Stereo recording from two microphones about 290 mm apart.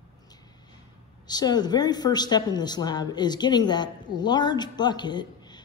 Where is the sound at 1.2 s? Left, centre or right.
Centre.